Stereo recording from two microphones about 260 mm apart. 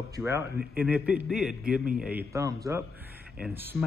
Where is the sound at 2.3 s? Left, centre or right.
Centre.